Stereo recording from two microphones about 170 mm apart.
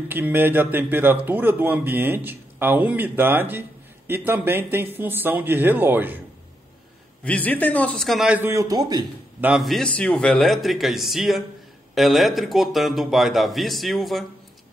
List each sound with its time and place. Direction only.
0.1 s speech: 10° right (ahead or behind)
7.2 s a man's voice: 10° left (ahead or behind); by 9.0 s 25° right (ahead or behind)
9.4 s a man's voice: 5° right (ahead or behind)